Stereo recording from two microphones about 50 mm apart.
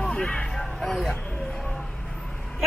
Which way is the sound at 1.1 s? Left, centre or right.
Left.